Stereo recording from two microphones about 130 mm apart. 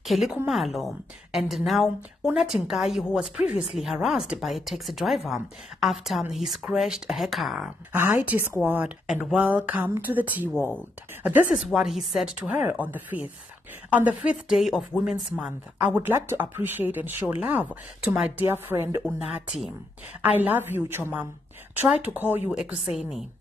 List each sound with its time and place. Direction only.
0.0 s a woman's voice: centre (ahead or behind)
7.9 s a woman's voice: 15° right (ahead or behind)
11.7 s a woman's voice: centre (ahead or behind)
15.9 s a woman's voice: 15° right (ahead or behind)
18.4 s a woman's voice: 15° right (ahead or behind)
20.2 s a woman's voice: 10° right (ahead or behind)
22.9 s speech: 5° right (ahead or behind)